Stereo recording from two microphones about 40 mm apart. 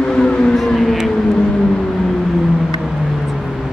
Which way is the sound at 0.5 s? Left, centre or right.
Centre.